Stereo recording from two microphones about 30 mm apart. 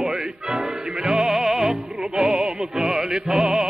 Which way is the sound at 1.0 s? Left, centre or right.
Centre.